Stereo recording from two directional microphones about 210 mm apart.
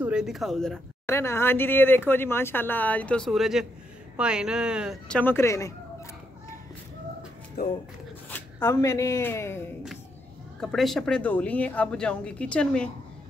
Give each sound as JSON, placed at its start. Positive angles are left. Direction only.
{"t": 0.0, "sound": "speech", "side_deg": -5}
{"t": 7.6, "sound": "speech", "side_deg": 50}
{"t": 8.5, "sound": "speech", "side_deg": 15}
{"t": 10.6, "sound": "speech", "side_deg": 0}